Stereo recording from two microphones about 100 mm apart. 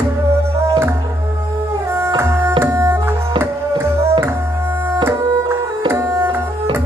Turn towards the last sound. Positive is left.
turn(degrees=-25)  # may be behind; listen again after turning